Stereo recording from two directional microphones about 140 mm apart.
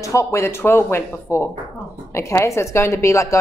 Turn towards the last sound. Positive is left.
turn(degrees=20)  # may be behind; listen again after turning